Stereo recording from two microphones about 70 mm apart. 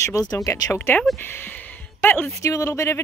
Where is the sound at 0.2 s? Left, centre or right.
Left.